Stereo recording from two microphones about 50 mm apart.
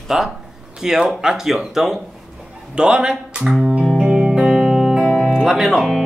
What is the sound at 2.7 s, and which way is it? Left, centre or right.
Speech, centre.